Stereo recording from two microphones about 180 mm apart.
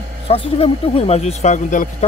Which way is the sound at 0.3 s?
30° left (ahead or behind).